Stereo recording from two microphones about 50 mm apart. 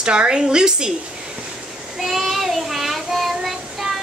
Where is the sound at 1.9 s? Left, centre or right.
Centre.